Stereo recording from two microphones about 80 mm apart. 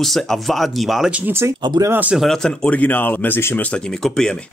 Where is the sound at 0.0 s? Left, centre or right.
Centre.